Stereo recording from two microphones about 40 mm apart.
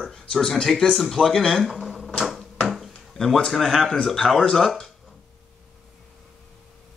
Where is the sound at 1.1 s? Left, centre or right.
Centre.